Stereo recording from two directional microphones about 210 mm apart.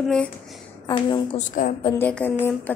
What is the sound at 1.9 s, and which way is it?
Speech, 10° left (ahead or behind).